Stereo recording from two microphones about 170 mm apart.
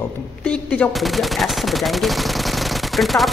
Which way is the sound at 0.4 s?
5° left (ahead or behind).